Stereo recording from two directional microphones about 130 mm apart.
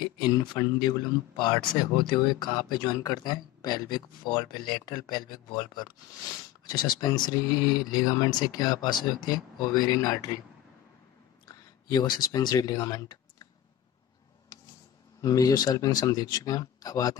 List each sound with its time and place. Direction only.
0.0 s speech: 35° left (ahead or behind)
11.4 s speech: 30° left (ahead or behind)
15.2 s speech: 30° left (ahead or behind)